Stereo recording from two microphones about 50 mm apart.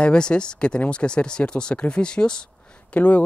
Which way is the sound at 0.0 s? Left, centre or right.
Centre.